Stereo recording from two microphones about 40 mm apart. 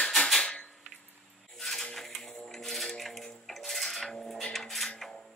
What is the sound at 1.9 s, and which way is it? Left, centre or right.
Typewriter, centre.